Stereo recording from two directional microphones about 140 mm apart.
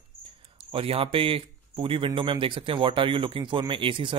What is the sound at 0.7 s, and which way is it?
Speech, 40° right (ahead or behind).